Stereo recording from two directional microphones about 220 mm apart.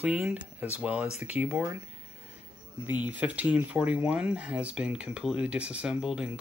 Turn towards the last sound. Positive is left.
turn(degrees=-5)  # may be behind; listen again after turning